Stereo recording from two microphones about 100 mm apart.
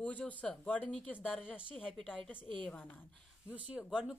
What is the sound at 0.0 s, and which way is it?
Speech, 15° left (ahead or behind).